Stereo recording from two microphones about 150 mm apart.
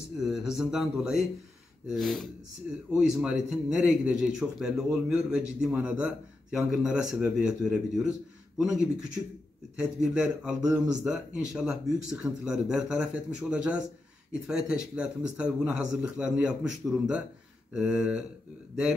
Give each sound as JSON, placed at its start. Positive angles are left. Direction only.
{"t": 0.2, "sound": "a man's voice", "side_deg": -5}